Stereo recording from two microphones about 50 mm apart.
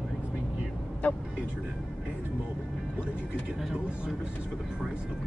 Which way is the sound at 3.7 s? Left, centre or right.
Right.